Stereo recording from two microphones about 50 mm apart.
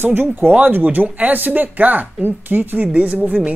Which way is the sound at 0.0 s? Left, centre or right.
Right.